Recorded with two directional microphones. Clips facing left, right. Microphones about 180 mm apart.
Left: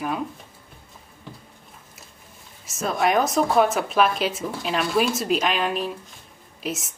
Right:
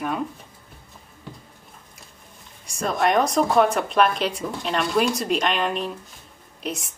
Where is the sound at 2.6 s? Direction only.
Centre (ahead or behind).